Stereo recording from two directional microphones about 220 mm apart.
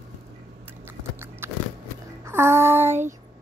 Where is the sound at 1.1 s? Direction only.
10° right (ahead or behind).